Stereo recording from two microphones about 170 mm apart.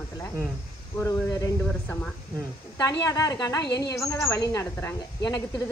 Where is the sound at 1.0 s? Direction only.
20° left (ahead or behind).